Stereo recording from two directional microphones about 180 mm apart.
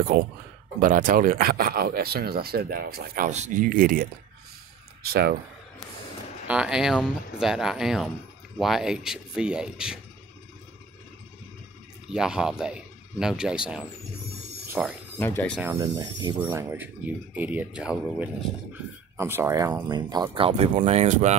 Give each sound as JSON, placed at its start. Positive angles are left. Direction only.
{"t": 0.7, "sound": "speech", "side_deg": -45}
{"t": 3.3, "sound": "speech", "side_deg": -40}
{"t": 6.4, "sound": "speech", "side_deg": -5}
{"t": 12.1, "sound": "speech", "side_deg": -5}
{"t": 15.1, "sound": "speech", "side_deg": 10}
{"t": 15.6, "sound": "speech", "side_deg": -20}